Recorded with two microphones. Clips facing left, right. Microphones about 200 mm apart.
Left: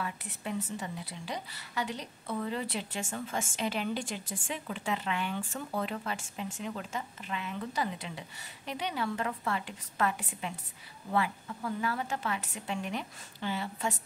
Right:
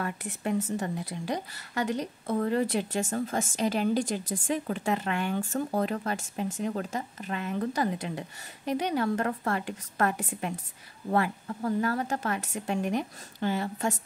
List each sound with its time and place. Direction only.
0.0 s a woman's voice: 50° right (ahead or behind)